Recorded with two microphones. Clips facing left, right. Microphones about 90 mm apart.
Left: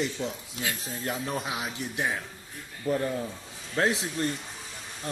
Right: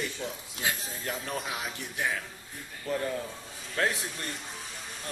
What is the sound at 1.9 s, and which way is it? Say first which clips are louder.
A man's voice: even; 25° left (ahead or behind).